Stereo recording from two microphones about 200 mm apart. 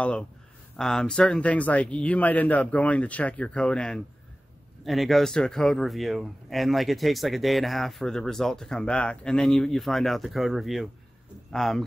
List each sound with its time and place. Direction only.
0.7 s speech: 5° left (ahead or behind)